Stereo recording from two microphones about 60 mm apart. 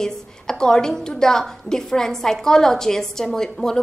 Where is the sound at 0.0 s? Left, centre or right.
Centre.